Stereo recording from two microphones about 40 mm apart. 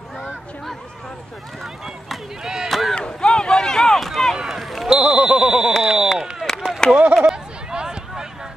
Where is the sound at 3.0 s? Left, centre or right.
Centre.